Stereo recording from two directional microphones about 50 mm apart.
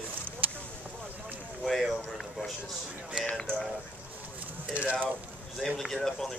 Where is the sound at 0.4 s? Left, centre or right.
Right.